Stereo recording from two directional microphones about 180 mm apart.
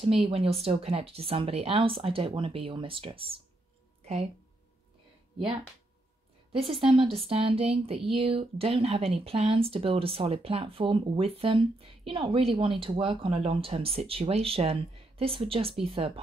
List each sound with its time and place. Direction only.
0.3 s speech: 35° right (ahead or behind)
4.0 s a sound: 35° right (ahead or behind)
6.6 s speech: 30° right (ahead or behind)